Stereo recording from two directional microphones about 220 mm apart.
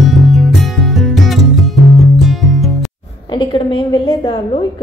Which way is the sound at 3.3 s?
20° left (ahead or behind).